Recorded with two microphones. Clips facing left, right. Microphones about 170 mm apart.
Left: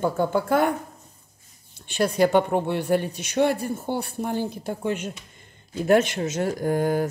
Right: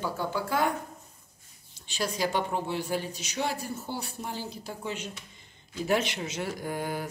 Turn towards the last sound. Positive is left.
turn(degrees=45)  # may be behind; listen again after turning